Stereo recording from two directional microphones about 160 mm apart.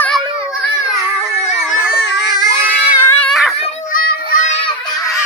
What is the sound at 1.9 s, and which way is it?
Baby cry, 90° left.